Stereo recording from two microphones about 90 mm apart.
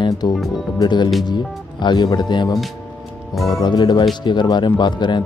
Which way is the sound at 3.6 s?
55° left (ahead or behind).